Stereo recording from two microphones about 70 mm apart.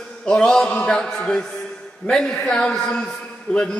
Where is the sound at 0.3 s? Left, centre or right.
Centre.